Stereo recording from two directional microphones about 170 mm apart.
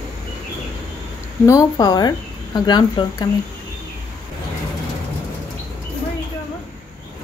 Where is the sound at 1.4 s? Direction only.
20° left (ahead or behind).